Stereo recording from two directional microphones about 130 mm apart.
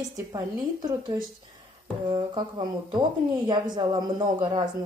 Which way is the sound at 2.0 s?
35° right (ahead or behind).